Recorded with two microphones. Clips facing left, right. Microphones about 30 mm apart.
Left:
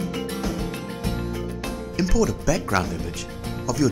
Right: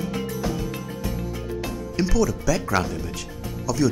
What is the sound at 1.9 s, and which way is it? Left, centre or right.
Speech, centre.